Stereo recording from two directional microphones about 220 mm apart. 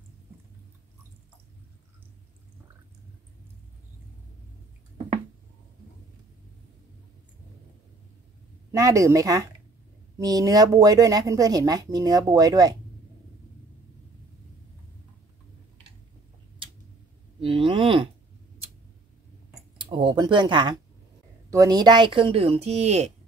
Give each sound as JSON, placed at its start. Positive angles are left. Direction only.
{"t": 8.7, "sound": "speech", "side_deg": -15}
{"t": 17.4, "sound": "a sound", "side_deg": -25}
{"t": 19.8, "sound": "speech", "side_deg": -20}